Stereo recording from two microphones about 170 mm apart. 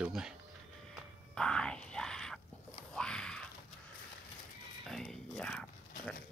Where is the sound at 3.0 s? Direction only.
5° left (ahead or behind).